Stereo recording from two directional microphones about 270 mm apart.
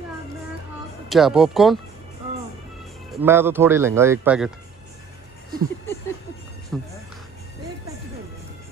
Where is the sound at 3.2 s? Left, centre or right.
Centre.